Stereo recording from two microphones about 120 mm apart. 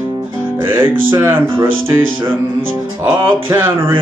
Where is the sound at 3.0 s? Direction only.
20° right (ahead or behind).